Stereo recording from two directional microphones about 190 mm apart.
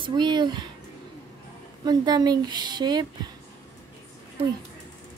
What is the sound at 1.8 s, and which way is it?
Speech, 20° right (ahead or behind).